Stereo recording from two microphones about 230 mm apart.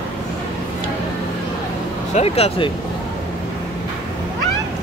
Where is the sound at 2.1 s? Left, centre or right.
Left.